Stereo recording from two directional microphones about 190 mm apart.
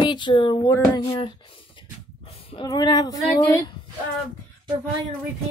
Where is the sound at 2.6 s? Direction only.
20° left (ahead or behind).